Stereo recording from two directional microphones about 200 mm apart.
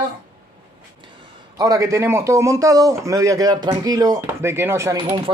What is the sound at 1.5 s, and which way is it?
Speech, 15° right (ahead or behind).